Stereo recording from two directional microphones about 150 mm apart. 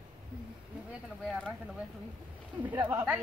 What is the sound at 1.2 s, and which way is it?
Bird, centre (ahead or behind).